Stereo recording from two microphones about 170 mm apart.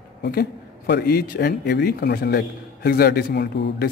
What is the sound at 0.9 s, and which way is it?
A man's voice, 65° left (ahead or behind).